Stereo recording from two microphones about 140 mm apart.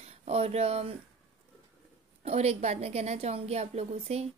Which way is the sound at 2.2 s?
45° right (ahead or behind).